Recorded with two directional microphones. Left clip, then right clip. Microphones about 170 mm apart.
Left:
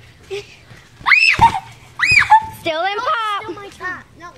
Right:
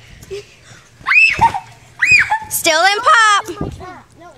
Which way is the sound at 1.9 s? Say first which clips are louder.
Left 1 dB; 40° left (ahead or behind).